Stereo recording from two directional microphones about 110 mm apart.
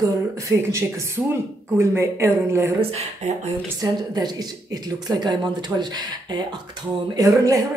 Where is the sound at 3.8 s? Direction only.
40° right (ahead or behind).